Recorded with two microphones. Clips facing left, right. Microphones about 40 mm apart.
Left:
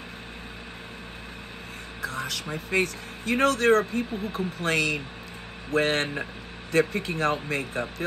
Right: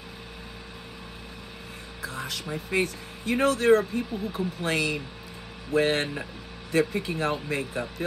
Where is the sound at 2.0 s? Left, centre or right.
Left.